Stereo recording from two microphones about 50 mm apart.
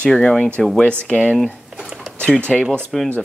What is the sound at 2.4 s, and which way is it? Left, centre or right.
Speech, left.